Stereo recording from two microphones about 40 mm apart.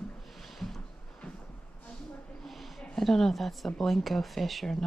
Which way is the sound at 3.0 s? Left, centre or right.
Centre.